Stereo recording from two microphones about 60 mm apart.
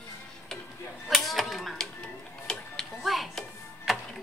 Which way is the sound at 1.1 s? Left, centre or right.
Centre.